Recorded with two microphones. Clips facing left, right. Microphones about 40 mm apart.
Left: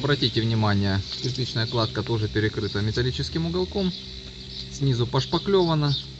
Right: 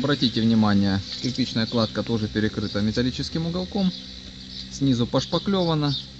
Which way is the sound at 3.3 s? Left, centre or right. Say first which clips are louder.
Left 4 dB; centre.